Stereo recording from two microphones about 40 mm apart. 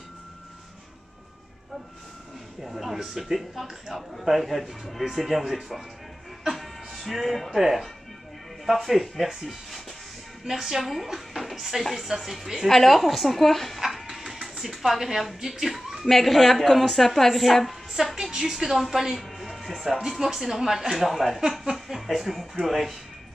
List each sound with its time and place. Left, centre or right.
2.6 s a woman's voice: centre
6.4 s music: centre
7.5 s a woman's voice: centre
10.4 s speech: centre
12.6 s speech: centre
13.7 s music: centre
14.6 s speech: centre
18.0 s a woman's voice: centre
19.4 s a sound: centre
20.0 s speech: centre